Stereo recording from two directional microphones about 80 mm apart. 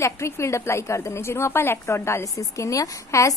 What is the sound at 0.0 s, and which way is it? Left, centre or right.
A woman's voice, left.